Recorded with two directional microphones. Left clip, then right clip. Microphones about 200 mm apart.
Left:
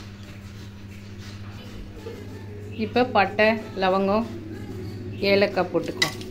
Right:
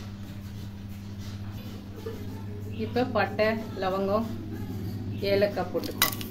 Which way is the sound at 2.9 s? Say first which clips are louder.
Left 6 dB; 25° left (ahead or behind).